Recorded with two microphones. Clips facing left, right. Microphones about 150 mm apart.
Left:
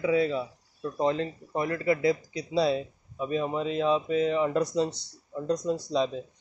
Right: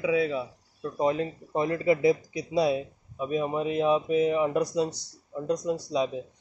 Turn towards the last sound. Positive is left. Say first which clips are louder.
# even
turn(degrees=-10)  # may be behind; listen again after turning